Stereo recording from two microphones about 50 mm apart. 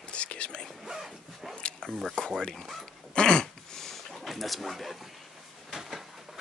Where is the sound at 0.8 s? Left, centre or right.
Centre.